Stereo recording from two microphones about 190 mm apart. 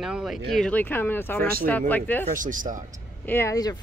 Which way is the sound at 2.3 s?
45° right (ahead or behind).